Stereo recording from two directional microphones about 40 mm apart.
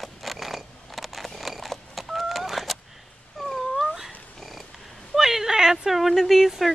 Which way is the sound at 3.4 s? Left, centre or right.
Centre.